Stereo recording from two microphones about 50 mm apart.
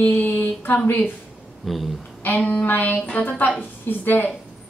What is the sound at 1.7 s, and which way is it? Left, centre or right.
Speech, centre.